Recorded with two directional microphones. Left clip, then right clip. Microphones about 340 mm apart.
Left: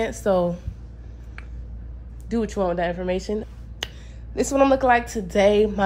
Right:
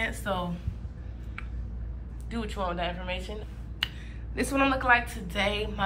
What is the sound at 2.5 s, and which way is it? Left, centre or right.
Speech, left.